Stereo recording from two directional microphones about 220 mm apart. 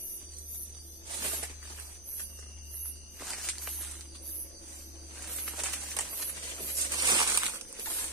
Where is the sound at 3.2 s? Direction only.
Centre (ahead or behind).